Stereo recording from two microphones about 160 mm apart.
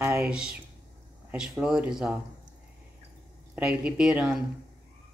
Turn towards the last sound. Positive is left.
turn(degrees=-5)  # may be behind; listen again after turning